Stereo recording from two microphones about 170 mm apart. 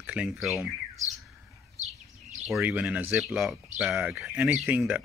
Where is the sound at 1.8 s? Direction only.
40° right (ahead or behind).